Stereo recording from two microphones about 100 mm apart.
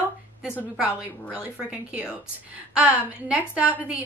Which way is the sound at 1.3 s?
10° right (ahead or behind).